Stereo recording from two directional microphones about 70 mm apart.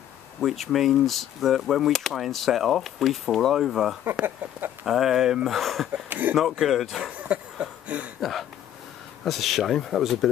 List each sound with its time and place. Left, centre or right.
0.4 s speech: centre
4.2 s a sound: right
4.8 s speech: centre
6.0 s speech: right
6.3 s speech: centre
7.2 s a sound: centre
8.2 s speech: centre